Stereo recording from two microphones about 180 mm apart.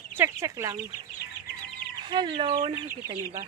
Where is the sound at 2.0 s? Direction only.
25° right (ahead or behind).